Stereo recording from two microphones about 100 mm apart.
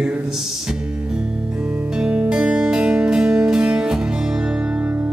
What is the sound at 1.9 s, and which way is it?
Music, 10° right (ahead or behind).